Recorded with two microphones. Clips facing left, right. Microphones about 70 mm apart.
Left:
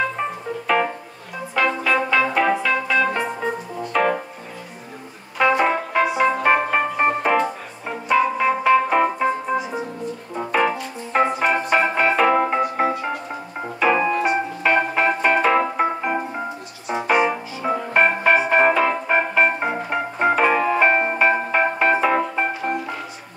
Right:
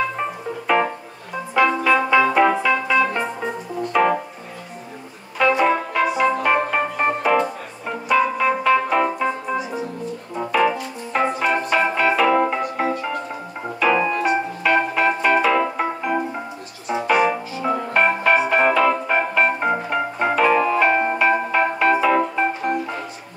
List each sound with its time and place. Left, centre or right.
1.5 s organ: centre
3.9 s music: centre
5.4 s music: left
11.1 s music: left
13.9 s keyboard: centre
14.6 s organ: left
16.8 s music: centre
17.2 s organ: left